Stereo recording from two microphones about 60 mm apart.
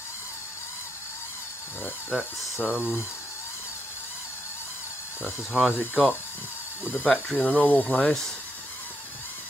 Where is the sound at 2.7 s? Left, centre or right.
Left.